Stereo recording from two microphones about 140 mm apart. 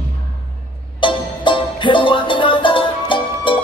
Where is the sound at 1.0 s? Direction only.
35° left (ahead or behind).